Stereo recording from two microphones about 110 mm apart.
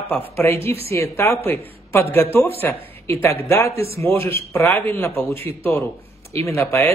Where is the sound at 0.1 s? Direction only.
15° left (ahead or behind).